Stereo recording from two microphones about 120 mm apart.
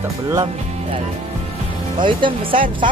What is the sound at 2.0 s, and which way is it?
Speech, 45° right (ahead or behind).